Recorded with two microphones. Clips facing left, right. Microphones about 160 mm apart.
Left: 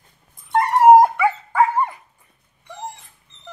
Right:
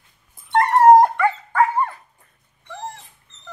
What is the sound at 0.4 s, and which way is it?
Dog, centre (ahead or behind).